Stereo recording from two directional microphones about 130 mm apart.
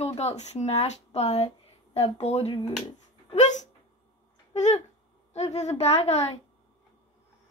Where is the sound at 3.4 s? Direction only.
65° left (ahead or behind).